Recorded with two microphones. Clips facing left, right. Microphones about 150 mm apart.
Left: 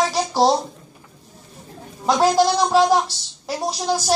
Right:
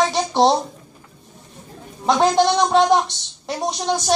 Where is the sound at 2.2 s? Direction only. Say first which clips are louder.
Even; 5° left (ahead or behind).